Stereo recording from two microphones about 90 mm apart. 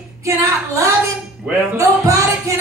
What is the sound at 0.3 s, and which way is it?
Speech, 25° right (ahead or behind).